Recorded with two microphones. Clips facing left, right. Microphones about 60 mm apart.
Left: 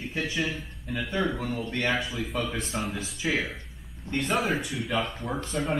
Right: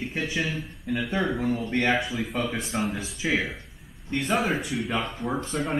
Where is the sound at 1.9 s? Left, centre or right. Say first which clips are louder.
Right 3 dB; centre.